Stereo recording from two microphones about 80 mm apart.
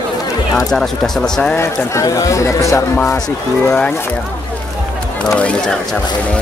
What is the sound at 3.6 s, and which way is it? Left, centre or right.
Speech, centre.